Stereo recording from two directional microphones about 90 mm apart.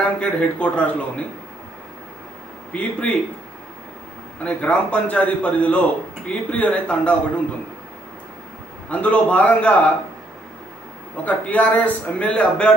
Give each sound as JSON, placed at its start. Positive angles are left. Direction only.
{"t": 0.0, "sound": "a man's voice", "side_deg": 15}
{"t": 2.7, "sound": "a man's voice", "side_deg": 15}
{"t": 4.5, "sound": "a man's voice", "side_deg": 15}
{"t": 8.8, "sound": "a man's voice", "side_deg": 15}
{"t": 11.2, "sound": "a man's voice", "side_deg": 15}